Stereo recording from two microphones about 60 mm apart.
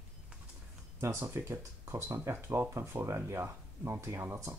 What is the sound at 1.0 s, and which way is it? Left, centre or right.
Speech, right.